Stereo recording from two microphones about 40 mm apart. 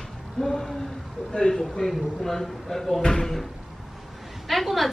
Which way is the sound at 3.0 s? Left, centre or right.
Centre.